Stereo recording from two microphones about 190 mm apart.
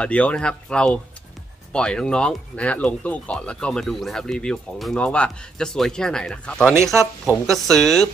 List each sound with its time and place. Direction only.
0.0 s speech: 5° left (ahead or behind)
6.8 s speech: 15° right (ahead or behind)
7.2 s speech: centre (ahead or behind)